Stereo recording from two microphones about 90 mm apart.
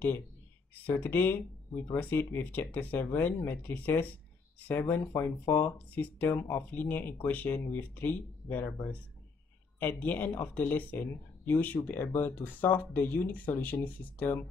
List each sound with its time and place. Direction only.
0.8 s speech: 20° left (ahead or behind)
9.8 s speech: 20° left (ahead or behind)